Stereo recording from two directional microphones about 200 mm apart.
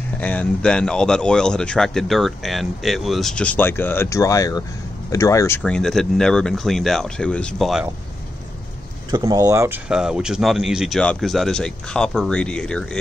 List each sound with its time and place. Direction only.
0.2 s speech: 5° left (ahead or behind)
5.6 s speech: 5° left (ahead or behind)
9.1 s speech: 20° right (ahead or behind)
9.8 s speech: 5° right (ahead or behind)